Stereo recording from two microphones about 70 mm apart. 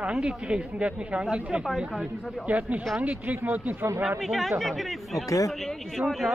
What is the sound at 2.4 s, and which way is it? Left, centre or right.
Speech, centre.